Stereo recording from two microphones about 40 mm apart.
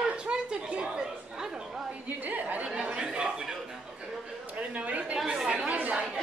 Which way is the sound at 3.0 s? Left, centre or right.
Right.